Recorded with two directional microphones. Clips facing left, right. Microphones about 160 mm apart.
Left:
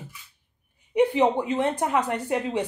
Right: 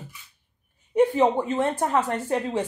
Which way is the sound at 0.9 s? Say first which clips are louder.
Right 1 dB; 15° left (ahead or behind).